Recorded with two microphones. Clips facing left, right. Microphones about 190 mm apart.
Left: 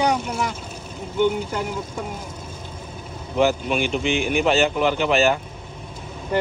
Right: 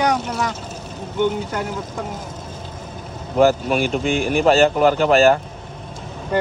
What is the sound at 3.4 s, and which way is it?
Speech, 40° right (ahead or behind).